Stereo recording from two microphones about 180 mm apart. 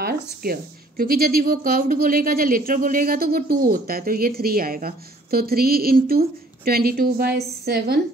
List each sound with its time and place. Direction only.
0.0 s a woman's voice: 55° right (ahead or behind)